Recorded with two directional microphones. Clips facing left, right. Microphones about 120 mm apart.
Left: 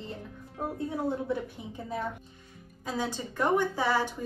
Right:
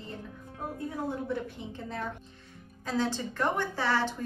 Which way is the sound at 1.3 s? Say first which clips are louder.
Left 1 dB; 10° left (ahead or behind).